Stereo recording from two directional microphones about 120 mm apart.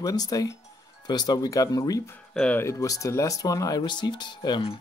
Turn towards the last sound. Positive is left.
turn(degrees=40)  # may be behind; listen again after turning